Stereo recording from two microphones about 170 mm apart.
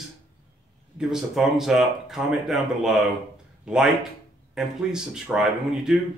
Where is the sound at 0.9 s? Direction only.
Centre (ahead or behind).